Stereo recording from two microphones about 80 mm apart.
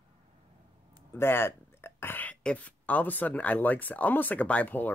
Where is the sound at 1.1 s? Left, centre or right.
Left.